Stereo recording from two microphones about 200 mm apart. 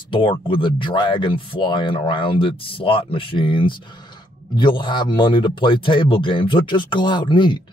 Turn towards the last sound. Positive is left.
turn(degrees=25)  # may be behind; listen again after turning